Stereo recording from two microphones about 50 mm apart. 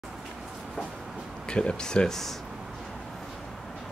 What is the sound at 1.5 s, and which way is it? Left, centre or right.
Speech, centre.